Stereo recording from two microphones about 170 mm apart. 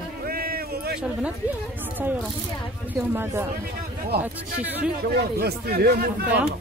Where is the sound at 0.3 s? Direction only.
60° right (ahead or behind).